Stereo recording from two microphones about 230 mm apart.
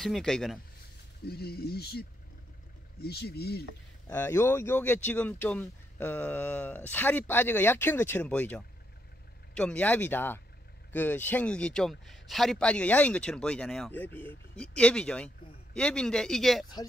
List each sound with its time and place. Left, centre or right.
0.0 s speech: centre
1.2 s speech: left
4.1 s speech: centre